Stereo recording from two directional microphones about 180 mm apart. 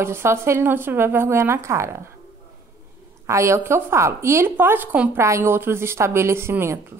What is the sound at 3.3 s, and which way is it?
Speech, 15° right (ahead or behind).